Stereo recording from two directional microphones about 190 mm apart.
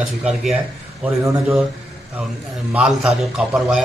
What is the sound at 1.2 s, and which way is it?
Speech, 15° right (ahead or behind).